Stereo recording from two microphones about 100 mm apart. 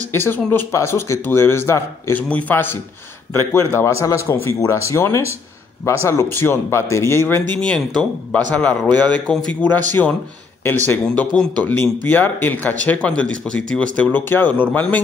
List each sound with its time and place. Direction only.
0.1 s speech: 25° left (ahead or behind)